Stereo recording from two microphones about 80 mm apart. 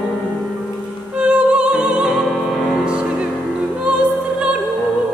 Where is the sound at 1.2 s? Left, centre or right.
Centre.